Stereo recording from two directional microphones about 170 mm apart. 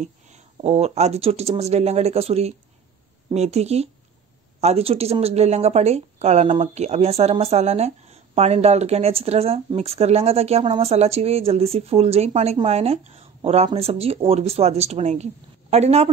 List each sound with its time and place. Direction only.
0.0 s a woman's voice: 40° right (ahead or behind)